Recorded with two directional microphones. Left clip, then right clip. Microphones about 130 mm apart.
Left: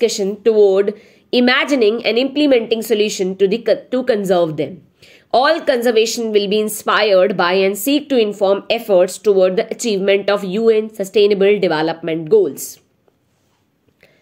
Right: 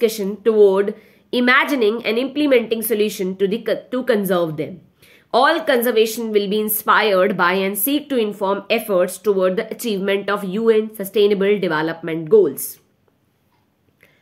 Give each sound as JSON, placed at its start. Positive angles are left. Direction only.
{"t": 0.0, "sound": "a woman's voice", "side_deg": 30}